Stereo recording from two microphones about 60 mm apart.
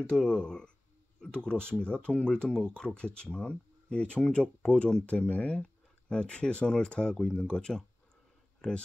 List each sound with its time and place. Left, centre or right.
0.0 s speech: centre